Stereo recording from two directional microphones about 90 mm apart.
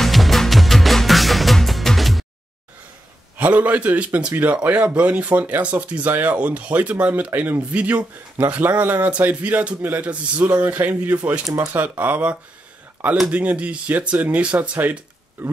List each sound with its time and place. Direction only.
0.0 s music: centre (ahead or behind)
3.3 s a man's voice: 15° right (ahead or behind)